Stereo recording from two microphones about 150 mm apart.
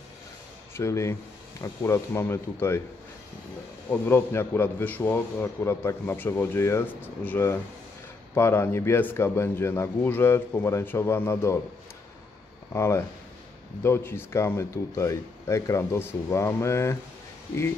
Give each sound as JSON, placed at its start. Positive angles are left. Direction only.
{"t": 0.7, "sound": "a man's voice", "side_deg": 20}
{"t": 4.0, "sound": "a man's voice", "side_deg": 15}
{"t": 12.7, "sound": "speech", "side_deg": 20}